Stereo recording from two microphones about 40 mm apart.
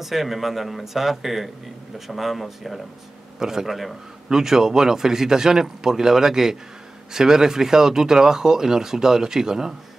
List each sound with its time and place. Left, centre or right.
0.0 s a man's voice: centre